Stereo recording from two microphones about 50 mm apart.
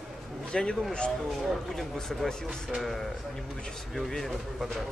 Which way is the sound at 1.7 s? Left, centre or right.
Centre.